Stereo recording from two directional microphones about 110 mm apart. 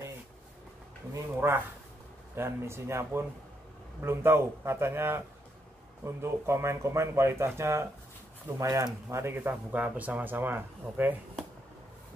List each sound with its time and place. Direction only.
1.1 s speech: 20° right (ahead or behind)